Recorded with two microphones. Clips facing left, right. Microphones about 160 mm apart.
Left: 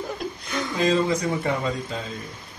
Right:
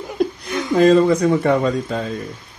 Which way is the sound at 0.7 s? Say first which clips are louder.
Right 9 dB; 55° right (ahead or behind).